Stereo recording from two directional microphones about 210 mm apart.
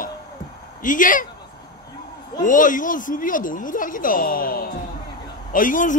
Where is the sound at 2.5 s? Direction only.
40° left (ahead or behind).